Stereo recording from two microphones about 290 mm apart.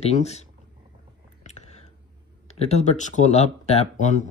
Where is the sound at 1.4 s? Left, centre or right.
Left.